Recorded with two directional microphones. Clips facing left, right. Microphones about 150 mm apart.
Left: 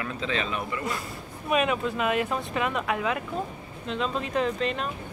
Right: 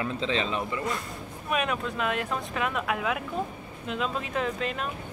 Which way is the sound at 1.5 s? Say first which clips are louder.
Left 4 dB; centre (ahead or behind).